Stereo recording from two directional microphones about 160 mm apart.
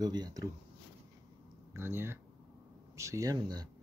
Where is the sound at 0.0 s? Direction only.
25° right (ahead or behind).